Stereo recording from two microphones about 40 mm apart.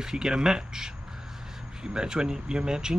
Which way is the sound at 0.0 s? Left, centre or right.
Centre.